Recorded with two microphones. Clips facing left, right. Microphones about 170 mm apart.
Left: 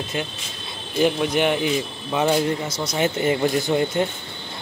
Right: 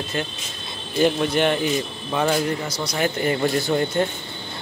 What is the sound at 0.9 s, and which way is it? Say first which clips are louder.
Speech: even; 5° left (ahead or behind).